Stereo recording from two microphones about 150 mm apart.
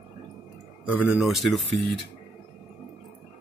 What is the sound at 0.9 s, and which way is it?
Speech, 5° right (ahead or behind).